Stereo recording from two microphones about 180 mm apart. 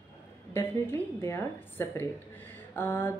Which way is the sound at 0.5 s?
10° left (ahead or behind).